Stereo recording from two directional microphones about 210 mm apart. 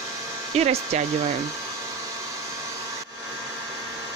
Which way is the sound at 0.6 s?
30° right (ahead or behind).